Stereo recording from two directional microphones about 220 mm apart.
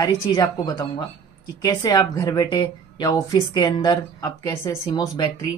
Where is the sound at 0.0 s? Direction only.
20° left (ahead or behind).